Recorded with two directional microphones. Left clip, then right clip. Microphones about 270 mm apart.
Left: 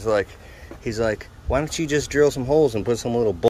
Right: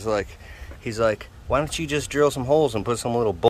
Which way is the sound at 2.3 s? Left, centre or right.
Right.